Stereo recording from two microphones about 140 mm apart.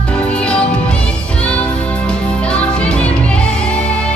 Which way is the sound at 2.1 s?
5° left (ahead or behind).